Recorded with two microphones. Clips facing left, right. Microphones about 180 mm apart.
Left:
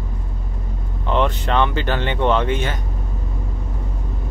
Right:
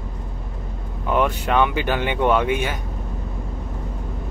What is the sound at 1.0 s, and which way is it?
Speech, 10° right (ahead or behind).